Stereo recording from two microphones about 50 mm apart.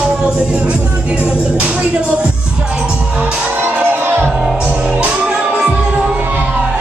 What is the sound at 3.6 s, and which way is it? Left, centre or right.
Music, right.